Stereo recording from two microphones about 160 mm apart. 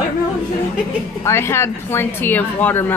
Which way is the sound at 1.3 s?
15° left (ahead or behind).